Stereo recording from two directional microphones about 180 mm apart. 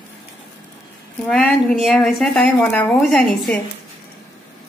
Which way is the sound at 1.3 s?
Centre (ahead or behind).